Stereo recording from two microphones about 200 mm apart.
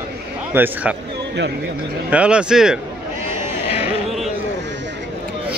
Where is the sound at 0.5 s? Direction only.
10° right (ahead or behind).